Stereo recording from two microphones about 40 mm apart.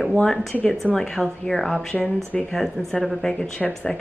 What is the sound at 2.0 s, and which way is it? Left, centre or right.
Speech, left.